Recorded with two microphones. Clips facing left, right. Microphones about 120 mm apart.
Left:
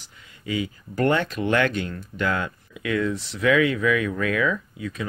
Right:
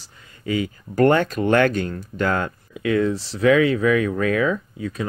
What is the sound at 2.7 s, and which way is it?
Speech, 30° right (ahead or behind).